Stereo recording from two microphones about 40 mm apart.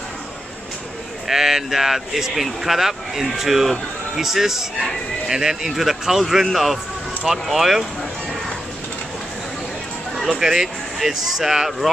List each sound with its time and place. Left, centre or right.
1.2 s a man's voice: centre
10.1 s a sound: centre
10.4 s speech: centre